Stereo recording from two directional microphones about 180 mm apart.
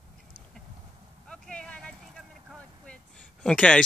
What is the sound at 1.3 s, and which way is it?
Vehicle, 5° left (ahead or behind).